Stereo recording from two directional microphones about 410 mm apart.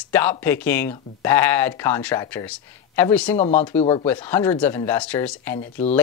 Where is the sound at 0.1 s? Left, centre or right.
Centre.